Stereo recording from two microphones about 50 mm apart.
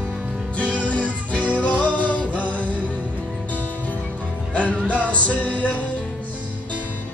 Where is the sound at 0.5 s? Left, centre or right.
Left.